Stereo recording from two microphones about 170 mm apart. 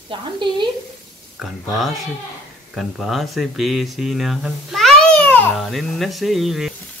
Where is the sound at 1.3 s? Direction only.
Centre (ahead or behind).